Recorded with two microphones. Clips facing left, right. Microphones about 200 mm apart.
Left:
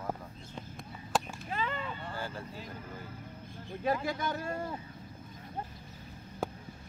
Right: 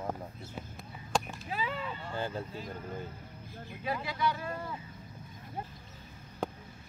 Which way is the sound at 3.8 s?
45° left (ahead or behind).